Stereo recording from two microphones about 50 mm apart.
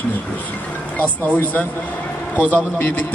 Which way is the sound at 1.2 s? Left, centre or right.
Left.